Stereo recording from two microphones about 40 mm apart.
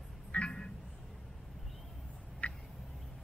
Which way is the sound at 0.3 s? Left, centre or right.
Left.